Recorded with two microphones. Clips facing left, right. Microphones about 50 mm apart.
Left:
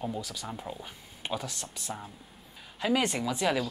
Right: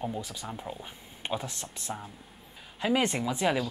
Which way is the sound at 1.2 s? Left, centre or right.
Right.